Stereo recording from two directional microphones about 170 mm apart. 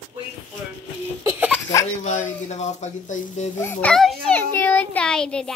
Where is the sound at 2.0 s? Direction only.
40° left (ahead or behind).